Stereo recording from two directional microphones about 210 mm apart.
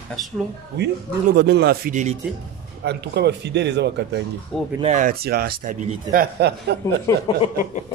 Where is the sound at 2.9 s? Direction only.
55° right (ahead or behind).